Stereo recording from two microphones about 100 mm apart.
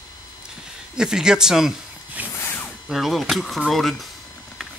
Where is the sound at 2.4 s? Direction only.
25° left (ahead or behind).